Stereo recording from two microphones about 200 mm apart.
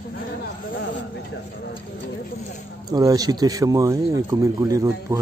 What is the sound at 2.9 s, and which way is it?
Speech, 20° right (ahead or behind).